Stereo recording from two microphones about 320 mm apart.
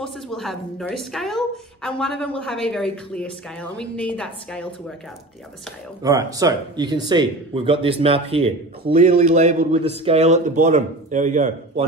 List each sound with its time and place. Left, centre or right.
0.0 s a woman's voice: centre
6.0 s speech: centre